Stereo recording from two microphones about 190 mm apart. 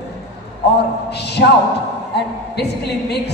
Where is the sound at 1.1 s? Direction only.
60° left (ahead or behind).